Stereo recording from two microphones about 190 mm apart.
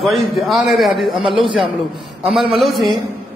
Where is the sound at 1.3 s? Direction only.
25° right (ahead or behind).